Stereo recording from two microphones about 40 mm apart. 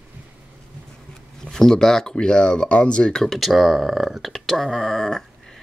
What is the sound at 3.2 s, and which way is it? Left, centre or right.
Speech, centre.